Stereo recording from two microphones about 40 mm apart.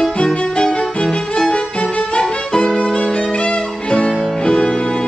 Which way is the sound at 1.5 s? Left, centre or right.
Left.